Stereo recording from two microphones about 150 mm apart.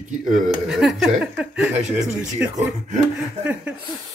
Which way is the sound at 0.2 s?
60° right (ahead or behind).